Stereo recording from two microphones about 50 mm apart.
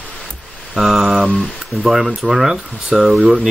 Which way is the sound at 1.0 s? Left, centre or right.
Centre.